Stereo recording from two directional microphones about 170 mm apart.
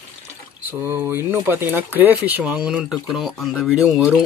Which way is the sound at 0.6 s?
10° right (ahead or behind).